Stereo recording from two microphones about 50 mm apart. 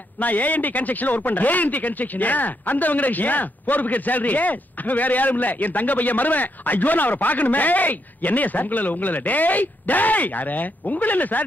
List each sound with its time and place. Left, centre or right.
0.2 s speech: left